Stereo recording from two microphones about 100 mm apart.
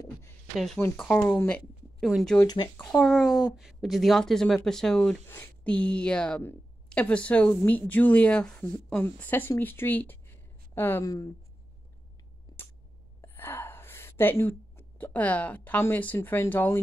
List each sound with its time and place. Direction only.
0.7 s speech: 20° left (ahead or behind)
2.0 s speech: centre (ahead or behind)
2.4 s speech: 45° left (ahead or behind)
2.8 s speech: 5° left (ahead or behind)
5.3 s speech: 15° left (ahead or behind)
13.2 s a sound: 20° left (ahead or behind)
15.8 s speech: 20° left (ahead or behind)